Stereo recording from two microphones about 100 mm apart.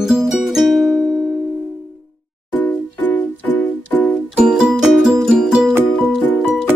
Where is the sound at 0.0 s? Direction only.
5° right (ahead or behind).